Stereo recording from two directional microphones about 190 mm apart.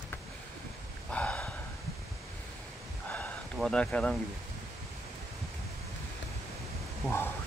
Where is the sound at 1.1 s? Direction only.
5° left (ahead or behind).